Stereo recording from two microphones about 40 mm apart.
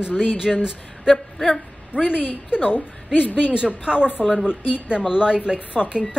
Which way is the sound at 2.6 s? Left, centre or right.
Left.